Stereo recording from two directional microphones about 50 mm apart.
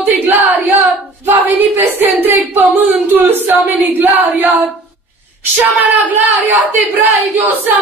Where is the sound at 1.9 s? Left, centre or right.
Right.